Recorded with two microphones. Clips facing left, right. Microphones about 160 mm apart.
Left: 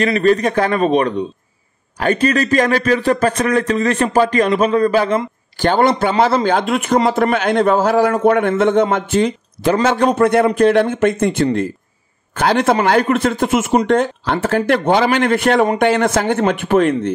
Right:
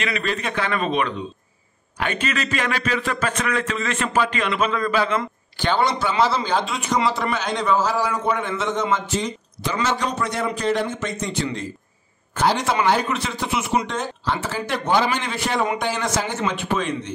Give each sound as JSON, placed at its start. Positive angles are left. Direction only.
{"t": 0.0, "sound": "a man's voice", "side_deg": 40}